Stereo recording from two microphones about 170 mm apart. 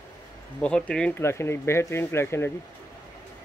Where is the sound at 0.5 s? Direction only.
5° left (ahead or behind).